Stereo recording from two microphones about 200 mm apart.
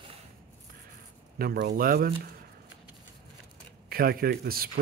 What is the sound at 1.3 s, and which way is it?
Speech, 50° right (ahead or behind).